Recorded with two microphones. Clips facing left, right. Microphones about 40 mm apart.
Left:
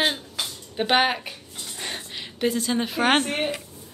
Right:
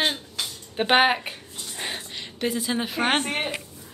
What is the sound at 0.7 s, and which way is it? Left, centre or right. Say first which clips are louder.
Speech: right 2 dB; centre.